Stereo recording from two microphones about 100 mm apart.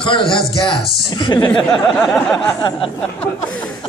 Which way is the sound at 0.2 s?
5° left (ahead or behind).